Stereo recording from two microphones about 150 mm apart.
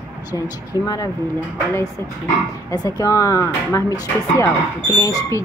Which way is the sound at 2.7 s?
20° left (ahead or behind).